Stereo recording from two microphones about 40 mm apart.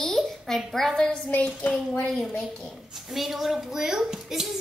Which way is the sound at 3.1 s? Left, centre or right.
Centre.